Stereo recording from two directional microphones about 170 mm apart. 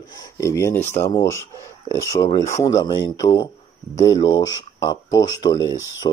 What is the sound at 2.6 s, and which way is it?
Speech, 20° left (ahead or behind).